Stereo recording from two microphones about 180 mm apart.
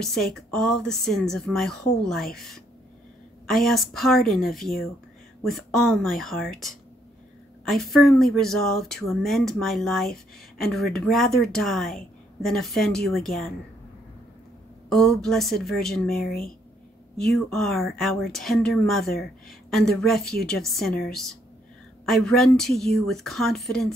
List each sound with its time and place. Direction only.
0.0 s speech: centre (ahead or behind)
14.9 s speech: 5° left (ahead or behind)
16.3 s speech: 55° left (ahead or behind)
17.2 s speech: centre (ahead or behind)